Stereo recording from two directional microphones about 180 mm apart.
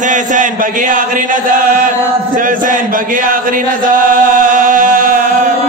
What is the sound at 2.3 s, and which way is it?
Chant, 50° right (ahead or behind).